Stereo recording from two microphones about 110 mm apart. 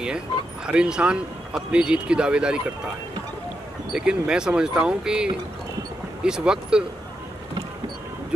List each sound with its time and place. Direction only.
0.7 s speech: 10° right (ahead or behind)
3.9 s speech: 5° right (ahead or behind)